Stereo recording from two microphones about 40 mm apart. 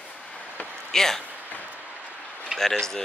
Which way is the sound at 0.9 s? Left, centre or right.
Centre.